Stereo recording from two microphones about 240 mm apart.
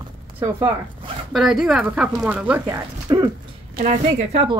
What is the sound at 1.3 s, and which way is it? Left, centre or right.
Speech, centre.